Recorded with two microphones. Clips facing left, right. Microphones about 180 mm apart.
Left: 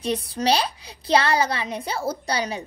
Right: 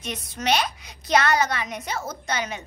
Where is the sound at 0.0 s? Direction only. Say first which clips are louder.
Left 6 dB; 35° left (ahead or behind).